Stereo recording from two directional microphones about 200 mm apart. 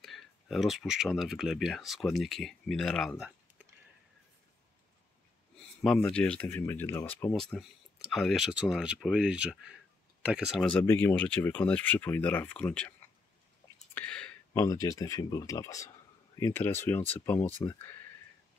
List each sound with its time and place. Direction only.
0.0 s speech: centre (ahead or behind)
3.2 s a sound: 5° right (ahead or behind)
5.8 s speech: 5° left (ahead or behind)
10.8 s speech: 15° left (ahead or behind)
13.9 s a sound: 5° left (ahead or behind)
14.6 s speech: 15° left (ahead or behind)